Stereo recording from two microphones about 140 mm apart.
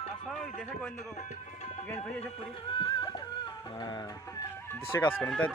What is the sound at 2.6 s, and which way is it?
Music, 35° left (ahead or behind).